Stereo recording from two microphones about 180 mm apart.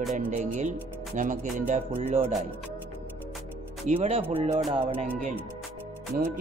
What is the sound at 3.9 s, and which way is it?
Music, 35° right (ahead or behind).